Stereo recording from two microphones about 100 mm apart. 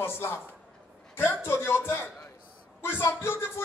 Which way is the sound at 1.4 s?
25° left (ahead or behind).